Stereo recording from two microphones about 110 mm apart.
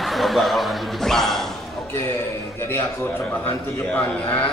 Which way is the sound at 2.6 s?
20° left (ahead or behind).